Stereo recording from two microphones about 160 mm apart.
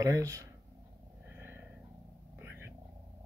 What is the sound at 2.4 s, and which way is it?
Purr, 15° right (ahead or behind).